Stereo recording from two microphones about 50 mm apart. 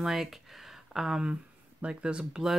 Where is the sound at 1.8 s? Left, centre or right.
Right.